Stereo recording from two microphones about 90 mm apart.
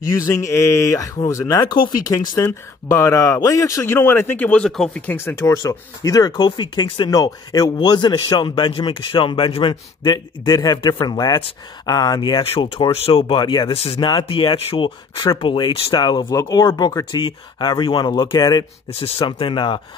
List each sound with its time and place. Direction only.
0.1 s speech: 40° left (ahead or behind)
1.6 s speech: 55° left (ahead or behind)
2.1 s speech: 35° left (ahead or behind); by 5.0 s 5° left (ahead or behind)
5.0 s speech: 30° left (ahead or behind)
5.6 s speech: 40° left (ahead or behind); by 7.1 s 60° left (ahead or behind)
7.1 s speech: 40° left (ahead or behind)
7.7 s a man's voice: 55° left (ahead or behind)
16.3 s speech: 40° left (ahead or behind)
16.6 s a man's voice: 50° left (ahead or behind)
18.3 s speech: 50° left (ahead or behind)
18.9 s speech: 90° left; by 19.8 s 65° left (ahead or behind)